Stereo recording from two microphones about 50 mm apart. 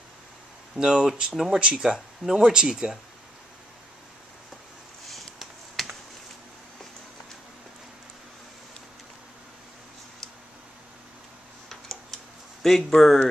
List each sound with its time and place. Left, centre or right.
0.7 s speech: centre
1.3 s speech: centre
1.6 s speech: centre
5.0 s a sound: centre
11.7 s tick-tock: centre
12.6 s speech: centre